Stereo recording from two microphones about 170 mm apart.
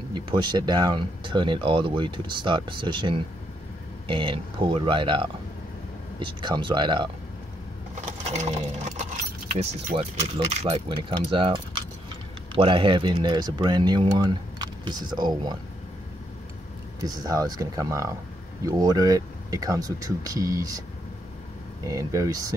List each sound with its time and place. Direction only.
0.1 s speech: 25° right (ahead or behind)
7.9 s sewing machine: 40° right (ahead or behind)
9.6 s speech: 40° right (ahead or behind)
17.0 s speech: 20° right (ahead or behind)
21.8 s speech: 20° right (ahead or behind)